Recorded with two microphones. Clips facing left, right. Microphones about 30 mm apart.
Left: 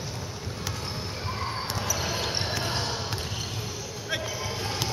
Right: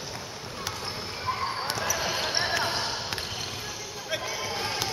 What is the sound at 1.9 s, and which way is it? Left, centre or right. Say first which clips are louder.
Basketball bounce: even; right.